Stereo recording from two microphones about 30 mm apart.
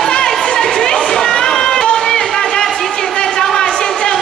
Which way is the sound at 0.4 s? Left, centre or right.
Left.